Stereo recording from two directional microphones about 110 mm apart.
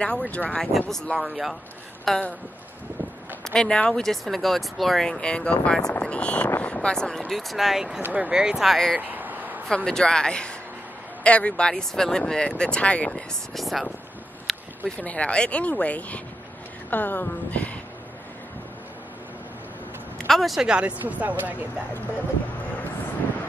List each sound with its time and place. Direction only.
0.0 s speech: 10° left (ahead or behind)
2.0 s speech: 10° left (ahead or behind)
3.4 s speech: 5° left (ahead or behind)
9.0 s a sound: 15° right (ahead or behind)
9.8 s speech: 5° left (ahead or behind)
14.5 s a sound: centre (ahead or behind)
15.0 s speech: 10° left (ahead or behind)
20.2 s speech: centre (ahead or behind)